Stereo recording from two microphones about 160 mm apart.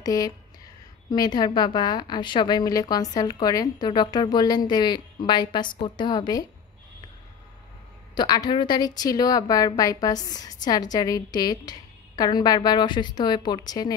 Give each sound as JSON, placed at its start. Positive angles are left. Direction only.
{"t": 0.0, "sound": "a woman's voice", "side_deg": 25}
{"t": 8.1, "sound": "a woman's voice", "side_deg": 25}